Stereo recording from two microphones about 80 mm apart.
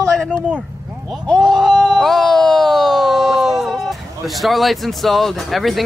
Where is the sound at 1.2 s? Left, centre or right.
Centre.